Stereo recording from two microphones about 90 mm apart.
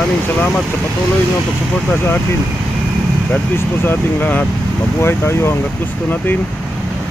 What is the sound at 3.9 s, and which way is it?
Speech, 20° left (ahead or behind).